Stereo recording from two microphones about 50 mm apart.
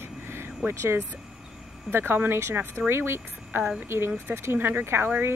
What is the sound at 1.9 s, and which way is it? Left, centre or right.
Speech, right.